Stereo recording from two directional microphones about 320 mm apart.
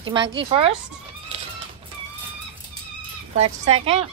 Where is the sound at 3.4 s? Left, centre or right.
Centre.